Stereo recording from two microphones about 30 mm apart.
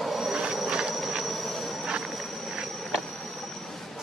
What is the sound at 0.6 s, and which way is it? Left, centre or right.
Rail transport, right.